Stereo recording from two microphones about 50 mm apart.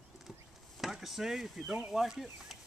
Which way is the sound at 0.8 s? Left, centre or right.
Centre.